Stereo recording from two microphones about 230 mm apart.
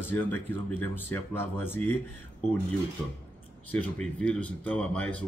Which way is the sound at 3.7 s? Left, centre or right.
Centre.